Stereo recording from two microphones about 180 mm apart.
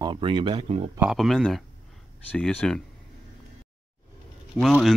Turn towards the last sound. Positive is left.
turn(degrees=0)  # may be behind; listen again after turning